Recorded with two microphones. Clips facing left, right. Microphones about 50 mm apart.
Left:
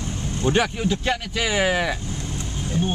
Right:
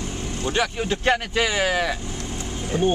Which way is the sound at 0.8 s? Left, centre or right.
Right.